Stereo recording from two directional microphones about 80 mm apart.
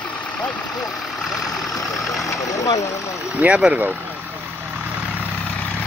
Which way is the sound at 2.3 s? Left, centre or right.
Left.